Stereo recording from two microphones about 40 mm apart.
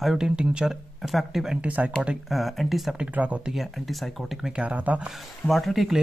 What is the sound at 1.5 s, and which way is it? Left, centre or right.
Speech, right.